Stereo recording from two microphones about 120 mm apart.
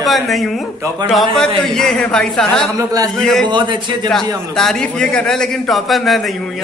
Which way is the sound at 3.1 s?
Centre (ahead or behind).